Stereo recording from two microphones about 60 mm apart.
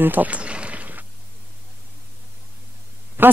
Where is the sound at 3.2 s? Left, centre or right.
Right.